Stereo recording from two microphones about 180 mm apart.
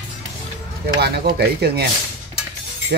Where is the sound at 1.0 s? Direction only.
65° right (ahead or behind).